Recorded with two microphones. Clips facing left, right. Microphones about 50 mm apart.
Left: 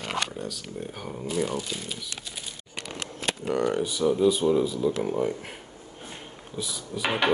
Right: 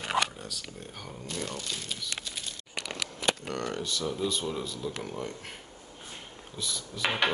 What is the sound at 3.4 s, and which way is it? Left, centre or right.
Speech, centre.